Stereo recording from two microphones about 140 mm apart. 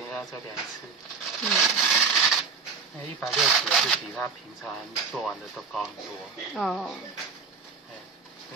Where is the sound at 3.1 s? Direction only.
5° right (ahead or behind).